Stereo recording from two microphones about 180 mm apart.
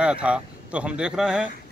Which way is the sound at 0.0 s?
5° right (ahead or behind).